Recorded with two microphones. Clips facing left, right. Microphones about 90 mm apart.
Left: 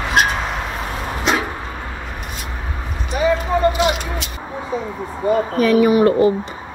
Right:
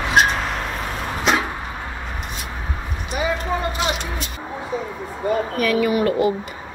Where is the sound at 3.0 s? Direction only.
15° right (ahead or behind).